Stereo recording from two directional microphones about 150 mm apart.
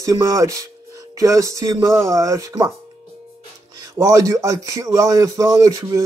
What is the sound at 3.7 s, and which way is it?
Speech, 20° right (ahead or behind).